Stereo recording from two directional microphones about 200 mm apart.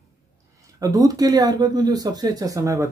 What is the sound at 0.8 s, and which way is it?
Speech, 15° right (ahead or behind).